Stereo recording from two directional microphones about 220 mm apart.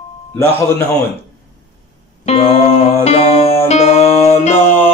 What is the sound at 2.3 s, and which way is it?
Music, 25° left (ahead or behind).